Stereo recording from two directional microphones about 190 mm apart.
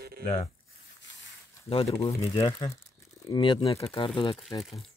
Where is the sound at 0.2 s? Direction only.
40° left (ahead or behind).